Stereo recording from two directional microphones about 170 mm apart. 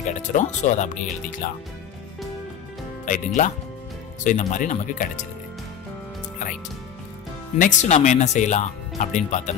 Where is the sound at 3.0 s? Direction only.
50° left (ahead or behind).